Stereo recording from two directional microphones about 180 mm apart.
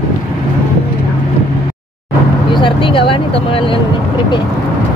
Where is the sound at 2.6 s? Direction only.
30° left (ahead or behind).